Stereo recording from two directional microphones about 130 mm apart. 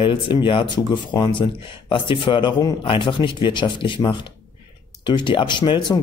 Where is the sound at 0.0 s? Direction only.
40° left (ahead or behind).